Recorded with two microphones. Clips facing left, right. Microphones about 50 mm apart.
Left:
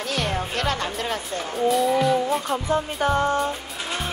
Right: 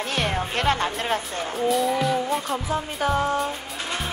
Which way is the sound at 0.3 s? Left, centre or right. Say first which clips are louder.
Right 2 dB; right.